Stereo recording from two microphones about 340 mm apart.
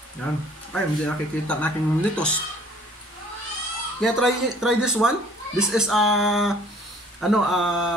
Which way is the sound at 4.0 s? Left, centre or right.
Centre.